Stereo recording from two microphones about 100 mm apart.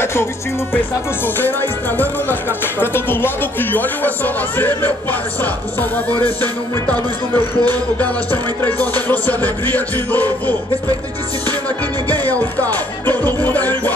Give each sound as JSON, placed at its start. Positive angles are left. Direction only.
{"t": 0.7, "sound": "music", "side_deg": 20}
{"t": 12.1, "sound": "music", "side_deg": 15}